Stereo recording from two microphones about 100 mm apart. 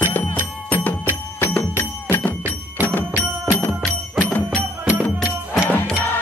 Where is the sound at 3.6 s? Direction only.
15° left (ahead or behind).